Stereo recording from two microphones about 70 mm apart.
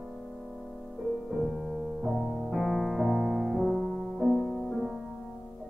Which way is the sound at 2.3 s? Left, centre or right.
Centre.